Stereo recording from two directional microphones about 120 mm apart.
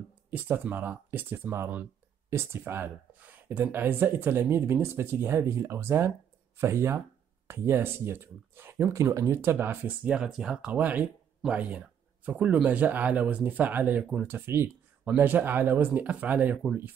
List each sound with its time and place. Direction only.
0.3 s speech: 15° right (ahead or behind)